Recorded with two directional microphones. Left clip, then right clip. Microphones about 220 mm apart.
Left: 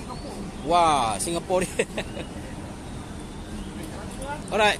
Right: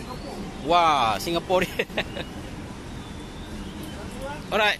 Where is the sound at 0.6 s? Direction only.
Centre (ahead or behind).